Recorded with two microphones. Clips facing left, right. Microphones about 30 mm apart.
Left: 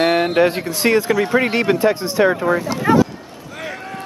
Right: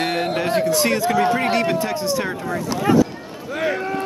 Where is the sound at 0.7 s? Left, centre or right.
Centre.